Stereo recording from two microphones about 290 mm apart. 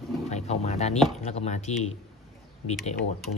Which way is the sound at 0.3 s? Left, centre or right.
Left.